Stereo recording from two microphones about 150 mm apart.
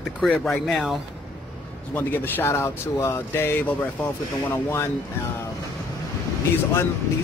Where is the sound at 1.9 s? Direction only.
10° left (ahead or behind).